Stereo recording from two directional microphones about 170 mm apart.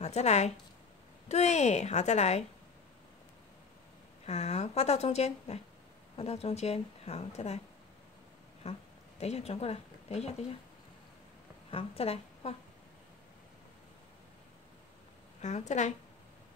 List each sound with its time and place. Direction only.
0.0 s a woman's voice: 40° left (ahead or behind)
4.3 s speech: 40° left (ahead or behind)
8.6 s speech: 35° left (ahead or behind)
11.7 s a woman's voice: 35° left (ahead or behind)
15.4 s a woman's voice: 45° left (ahead or behind)